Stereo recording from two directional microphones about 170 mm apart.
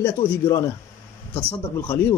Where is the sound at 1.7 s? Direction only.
15° left (ahead or behind).